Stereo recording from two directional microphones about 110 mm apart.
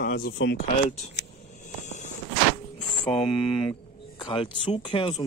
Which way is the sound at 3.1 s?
50° left (ahead or behind).